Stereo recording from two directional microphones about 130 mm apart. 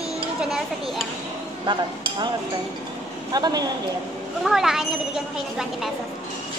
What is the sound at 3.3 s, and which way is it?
Speech, 30° right (ahead or behind).